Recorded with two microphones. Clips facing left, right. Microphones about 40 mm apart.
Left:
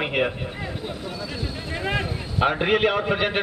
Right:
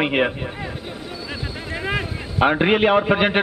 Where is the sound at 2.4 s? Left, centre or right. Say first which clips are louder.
Right 4 dB; right.